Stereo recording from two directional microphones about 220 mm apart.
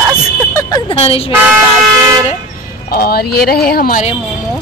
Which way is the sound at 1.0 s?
25° left (ahead or behind).